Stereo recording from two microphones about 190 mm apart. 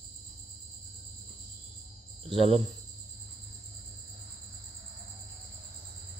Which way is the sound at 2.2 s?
30° right (ahead or behind).